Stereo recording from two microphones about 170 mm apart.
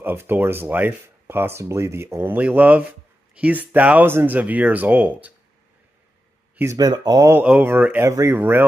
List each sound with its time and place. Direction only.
0.0 s speech: 15° right (ahead or behind)
6.5 s speech: 15° right (ahead or behind)